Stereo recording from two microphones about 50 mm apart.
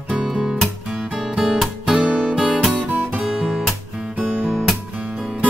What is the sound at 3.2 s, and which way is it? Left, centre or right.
Guitar, centre.